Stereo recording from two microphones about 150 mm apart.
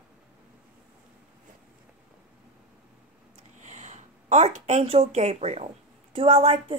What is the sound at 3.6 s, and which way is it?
Speech, 50° right (ahead or behind).